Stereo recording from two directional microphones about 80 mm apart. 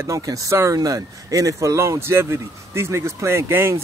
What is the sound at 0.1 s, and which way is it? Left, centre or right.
Speech, right.